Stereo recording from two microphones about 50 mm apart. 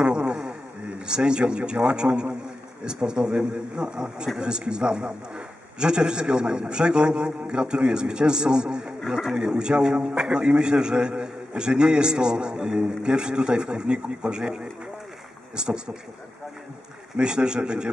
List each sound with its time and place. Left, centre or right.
0.0 s insect: centre
1.0 s a man's voice: centre
17.2 s a man's voice: centre